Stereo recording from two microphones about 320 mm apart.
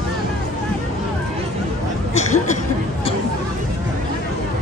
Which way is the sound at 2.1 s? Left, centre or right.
Left.